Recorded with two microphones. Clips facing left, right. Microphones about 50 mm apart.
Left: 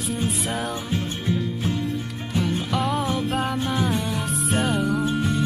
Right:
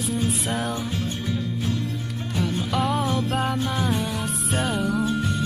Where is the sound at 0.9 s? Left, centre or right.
Left.